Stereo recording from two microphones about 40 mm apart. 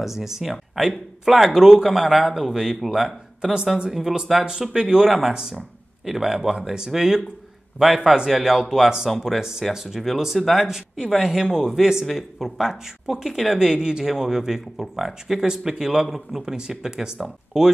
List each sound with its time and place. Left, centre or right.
0.0 s a man's voice: centre
16.5 s speech: centre